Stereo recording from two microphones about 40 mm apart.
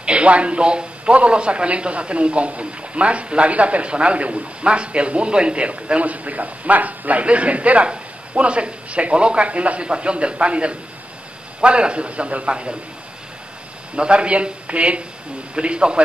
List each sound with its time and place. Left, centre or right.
0.0 s a man's voice: right
13.9 s a man's voice: right